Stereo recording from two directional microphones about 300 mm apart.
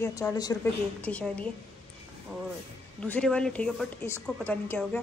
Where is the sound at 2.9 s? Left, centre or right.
Centre.